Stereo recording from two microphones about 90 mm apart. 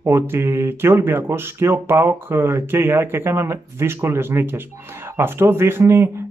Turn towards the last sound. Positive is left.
turn(degrees=-25)  # may be behind; listen again after turning